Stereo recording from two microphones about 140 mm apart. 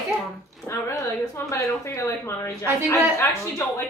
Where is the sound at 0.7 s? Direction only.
20° left (ahead or behind).